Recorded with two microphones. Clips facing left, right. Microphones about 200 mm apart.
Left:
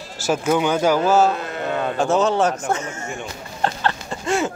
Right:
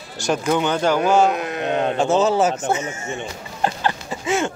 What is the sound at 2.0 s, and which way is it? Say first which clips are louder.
Speech: even; centre (ahead or behind).